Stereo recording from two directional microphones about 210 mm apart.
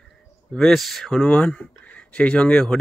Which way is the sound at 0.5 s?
Centre (ahead or behind).